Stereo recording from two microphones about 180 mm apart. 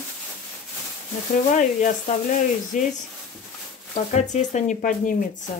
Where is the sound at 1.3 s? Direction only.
45° left (ahead or behind).